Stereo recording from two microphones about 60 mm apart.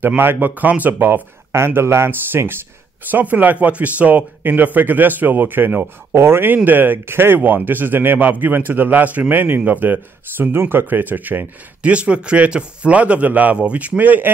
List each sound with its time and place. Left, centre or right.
0.2 s speech: right